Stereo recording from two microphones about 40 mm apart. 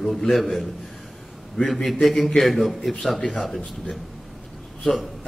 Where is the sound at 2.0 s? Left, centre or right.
Centre.